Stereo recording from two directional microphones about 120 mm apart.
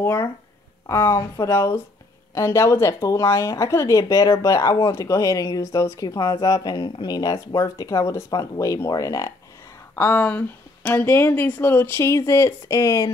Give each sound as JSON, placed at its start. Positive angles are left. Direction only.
{"t": 0.0, "sound": "speech", "side_deg": 20}